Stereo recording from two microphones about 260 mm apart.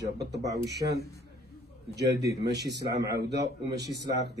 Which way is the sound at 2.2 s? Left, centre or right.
Right.